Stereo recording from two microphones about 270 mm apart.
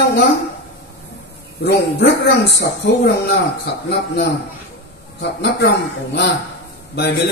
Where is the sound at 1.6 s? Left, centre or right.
Left.